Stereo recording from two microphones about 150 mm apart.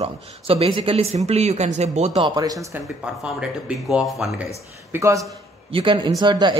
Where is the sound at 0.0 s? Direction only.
40° right (ahead or behind).